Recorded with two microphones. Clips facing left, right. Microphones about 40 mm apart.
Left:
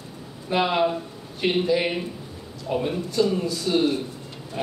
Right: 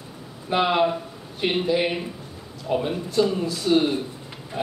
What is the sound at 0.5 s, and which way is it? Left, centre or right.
Speech, centre.